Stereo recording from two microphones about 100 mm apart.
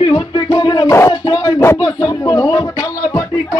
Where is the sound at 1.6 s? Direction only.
30° left (ahead or behind).